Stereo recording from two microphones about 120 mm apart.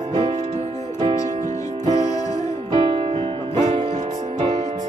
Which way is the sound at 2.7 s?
40° right (ahead or behind).